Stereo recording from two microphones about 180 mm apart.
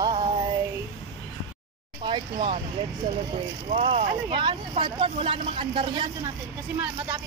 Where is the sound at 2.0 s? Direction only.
25° right (ahead or behind).